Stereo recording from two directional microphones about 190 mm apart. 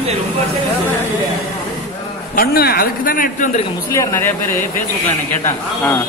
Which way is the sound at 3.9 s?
15° left (ahead or behind).